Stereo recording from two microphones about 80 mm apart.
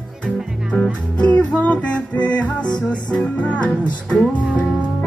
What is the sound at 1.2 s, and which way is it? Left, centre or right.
Music, centre.